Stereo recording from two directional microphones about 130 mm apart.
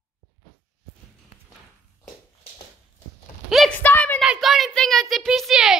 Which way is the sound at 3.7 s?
15° left (ahead or behind).